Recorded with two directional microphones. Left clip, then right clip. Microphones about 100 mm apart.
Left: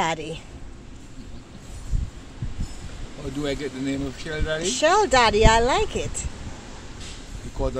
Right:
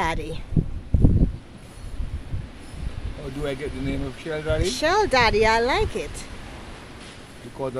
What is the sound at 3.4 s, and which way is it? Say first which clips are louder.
Speech: left 1 dB; 20° right (ahead or behind).